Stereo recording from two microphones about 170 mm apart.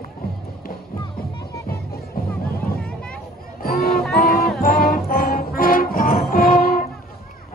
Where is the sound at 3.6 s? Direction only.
60° left (ahead or behind).